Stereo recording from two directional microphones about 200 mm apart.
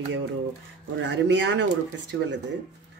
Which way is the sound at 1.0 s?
65° right (ahead or behind).